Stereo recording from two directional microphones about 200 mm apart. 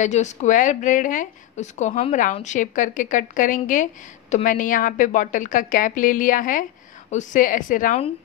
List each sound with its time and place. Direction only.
0.0 s speech: 35° left (ahead or behind)